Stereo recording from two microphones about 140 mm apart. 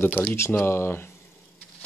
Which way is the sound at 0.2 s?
15° left (ahead or behind).